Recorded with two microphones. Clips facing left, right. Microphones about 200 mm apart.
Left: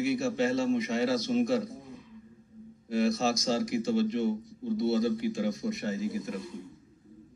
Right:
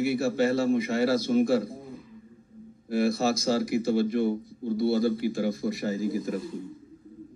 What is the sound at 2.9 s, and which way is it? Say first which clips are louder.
Speech: right 2 dB; 55° right (ahead or behind).